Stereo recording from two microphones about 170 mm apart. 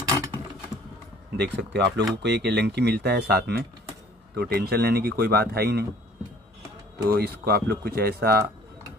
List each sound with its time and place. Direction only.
1.3 s a man's voice: 85° right; by 5.9 s 65° right (ahead or behind)
7.1 s speech: 65° right (ahead or behind)